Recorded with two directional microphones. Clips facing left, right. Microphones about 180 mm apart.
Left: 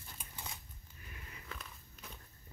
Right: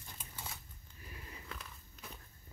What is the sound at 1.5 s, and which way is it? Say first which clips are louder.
Walk: even; centre (ahead or behind).